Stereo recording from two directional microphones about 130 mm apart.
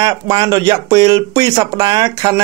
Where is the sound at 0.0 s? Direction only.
35° right (ahead or behind).